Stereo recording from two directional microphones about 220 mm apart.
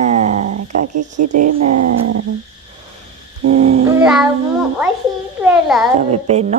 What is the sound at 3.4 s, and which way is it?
Speech, 30° right (ahead or behind).